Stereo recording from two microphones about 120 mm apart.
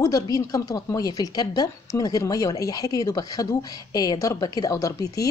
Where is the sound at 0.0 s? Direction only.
30° left (ahead or behind).